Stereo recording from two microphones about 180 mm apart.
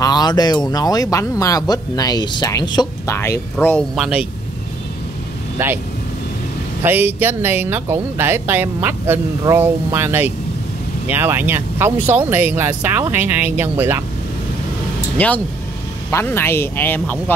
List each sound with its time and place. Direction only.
0.0 s speech: 20° left (ahead or behind)
3.9 s speech: 5° right (ahead or behind)
5.6 s speech: 15° right (ahead or behind)
6.8 s speech: 10° right (ahead or behind)
15.1 s speech: 10° left (ahead or behind)